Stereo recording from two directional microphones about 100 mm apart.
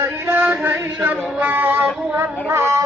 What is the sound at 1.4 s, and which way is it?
Music, 20° right (ahead or behind).